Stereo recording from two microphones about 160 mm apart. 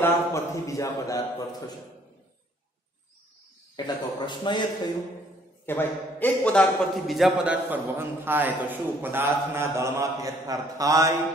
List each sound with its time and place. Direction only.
0.0 s a sound: 20° left (ahead or behind)
3.7 s a man's voice: 30° left (ahead or behind)
5.7 s a man's voice: 15° left (ahead or behind); by 11.1 s 20° right (ahead or behind)